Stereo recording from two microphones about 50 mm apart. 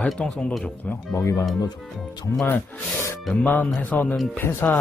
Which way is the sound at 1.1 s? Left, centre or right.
Left.